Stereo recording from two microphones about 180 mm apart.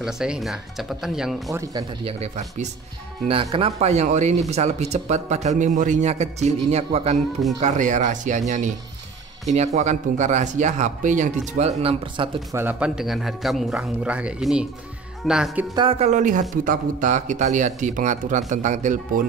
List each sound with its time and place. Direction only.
0.0 s a man's voice: 5° right (ahead or behind)
1.5 s speech: 20° right (ahead or behind)
2.0 s a man's voice: 40° right (ahead or behind)
12.5 s a man's voice: 10° right (ahead or behind)
15.7 s speech: 30° right (ahead or behind); by 19.2 s 45° right (ahead or behind)